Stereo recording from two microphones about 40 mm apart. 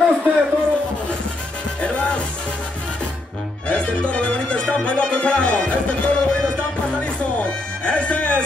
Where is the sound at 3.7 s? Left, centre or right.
Left.